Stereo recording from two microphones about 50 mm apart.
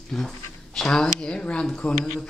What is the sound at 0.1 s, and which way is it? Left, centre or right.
Speech, centre.